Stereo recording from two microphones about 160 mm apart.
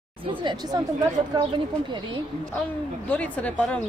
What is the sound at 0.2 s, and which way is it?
Speech, 30° right (ahead or behind).